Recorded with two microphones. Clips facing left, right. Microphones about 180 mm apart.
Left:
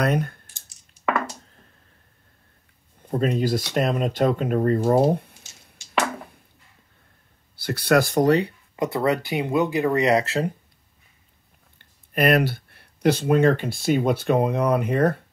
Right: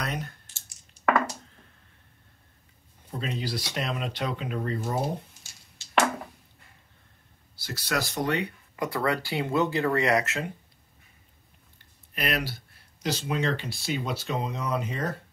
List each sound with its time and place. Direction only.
0.0 s speech: 55° left (ahead or behind)
0.5 s clicking: 15° left (ahead or behind)
0.9 s a sound: 5° right (ahead or behind)
3.1 s speech: 50° left (ahead or behind)
5.4 s chopping: 20° left (ahead or behind)
7.5 s speech: 60° left (ahead or behind)
8.3 s speech: 30° left (ahead or behind)
10.2 s speech: 35° left (ahead or behind)
12.1 s speech: 50° left (ahead or behind)